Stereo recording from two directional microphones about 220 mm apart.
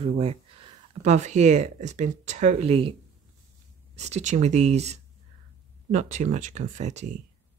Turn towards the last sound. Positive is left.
turn(degrees=-30)  # may be behind; listen again after turning